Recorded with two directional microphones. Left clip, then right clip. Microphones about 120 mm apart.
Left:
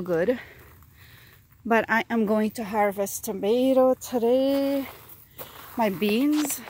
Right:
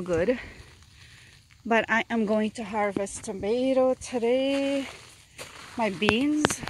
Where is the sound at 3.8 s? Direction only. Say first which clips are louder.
Left 3 dB; 45° left (ahead or behind).